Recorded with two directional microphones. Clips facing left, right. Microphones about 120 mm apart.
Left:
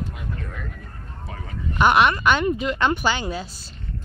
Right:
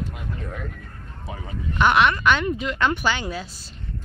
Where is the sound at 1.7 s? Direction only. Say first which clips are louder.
Left 1 dB; 10° left (ahead or behind).